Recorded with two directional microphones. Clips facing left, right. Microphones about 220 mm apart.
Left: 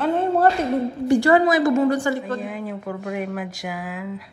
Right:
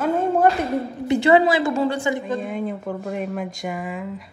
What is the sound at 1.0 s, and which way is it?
A woman's voice, 20° right (ahead or behind).